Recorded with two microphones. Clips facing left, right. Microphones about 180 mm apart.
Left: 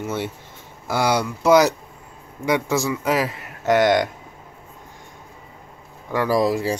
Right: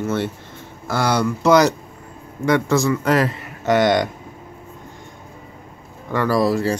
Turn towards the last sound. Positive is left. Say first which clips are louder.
# right 2 dB
turn(degrees=15)  # may be behind; listen again after turning